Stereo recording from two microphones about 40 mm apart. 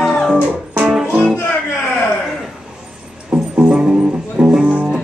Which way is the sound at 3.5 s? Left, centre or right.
Right.